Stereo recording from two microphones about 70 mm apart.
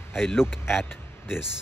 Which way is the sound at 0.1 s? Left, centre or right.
Left.